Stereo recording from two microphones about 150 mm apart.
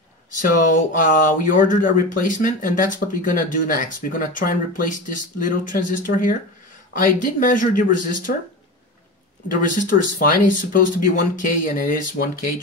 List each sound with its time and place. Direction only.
0.3 s speech: 60° left (ahead or behind)
9.5 s speech: 65° left (ahead or behind)